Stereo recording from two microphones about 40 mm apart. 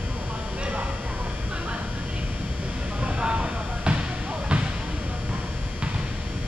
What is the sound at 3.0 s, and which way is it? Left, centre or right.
Vehicle, right.